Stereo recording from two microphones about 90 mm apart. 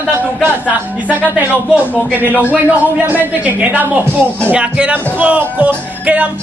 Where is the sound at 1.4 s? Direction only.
15° right (ahead or behind).